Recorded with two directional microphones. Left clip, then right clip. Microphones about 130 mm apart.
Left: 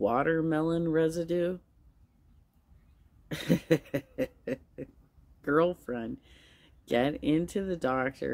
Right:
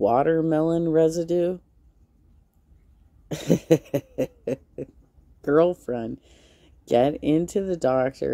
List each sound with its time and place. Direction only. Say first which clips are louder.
0.0 s speech: right 7 dB; 40° right (ahead or behind)
3.3 s cough: right 7 dB; 40° right (ahead or behind)
5.4 s speech: right 7 dB; 40° right (ahead or behind)